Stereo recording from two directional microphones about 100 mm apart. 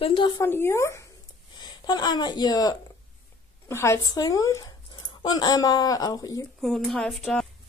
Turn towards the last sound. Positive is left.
turn(degrees=10)  # may be behind; listen again after turning